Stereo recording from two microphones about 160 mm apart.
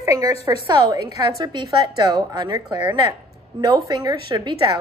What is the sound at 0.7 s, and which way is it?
A woman's voice, 25° right (ahead or behind).